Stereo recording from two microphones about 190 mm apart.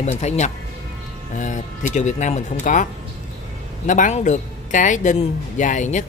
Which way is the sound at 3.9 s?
40° left (ahead or behind).